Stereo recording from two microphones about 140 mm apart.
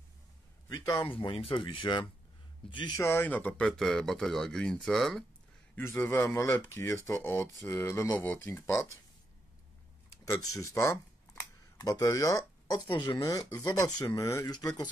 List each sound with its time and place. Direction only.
0.7 s speech: 30° left (ahead or behind)
3.0 s speech: 15° left (ahead or behind)
5.8 s speech: 15° left (ahead or behind)
10.2 s speech: 25° left (ahead or behind)